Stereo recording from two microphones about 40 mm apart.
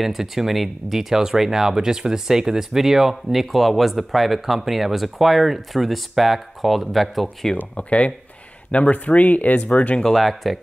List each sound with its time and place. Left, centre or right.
0.0 s speech: centre
7.7 s speech: left
9.7 s speech: left
10.1 s speech: centre